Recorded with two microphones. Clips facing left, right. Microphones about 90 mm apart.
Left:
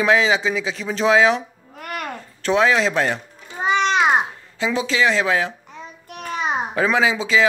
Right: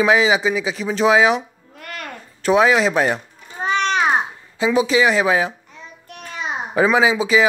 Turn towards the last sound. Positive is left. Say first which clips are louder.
# right 2 dB
turn(degrees=-10)  # may be behind; listen again after turning